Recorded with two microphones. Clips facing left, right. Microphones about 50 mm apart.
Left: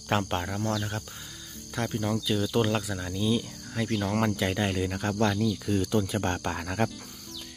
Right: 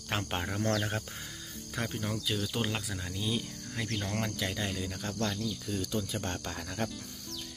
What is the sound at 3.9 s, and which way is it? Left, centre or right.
Speech, centre.